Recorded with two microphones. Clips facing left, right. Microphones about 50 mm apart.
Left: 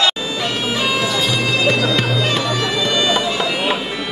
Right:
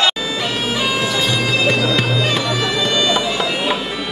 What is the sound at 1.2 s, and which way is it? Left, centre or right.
Bagpipes, centre.